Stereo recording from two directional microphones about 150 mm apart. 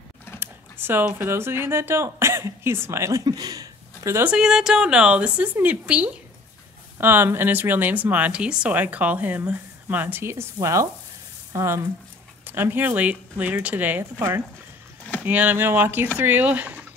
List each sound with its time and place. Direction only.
0.4 s speech: 15° right (ahead or behind)
4.3 s speech: 5° right (ahead or behind)